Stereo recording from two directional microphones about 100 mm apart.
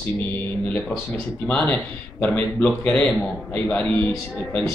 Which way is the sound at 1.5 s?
15° left (ahead or behind).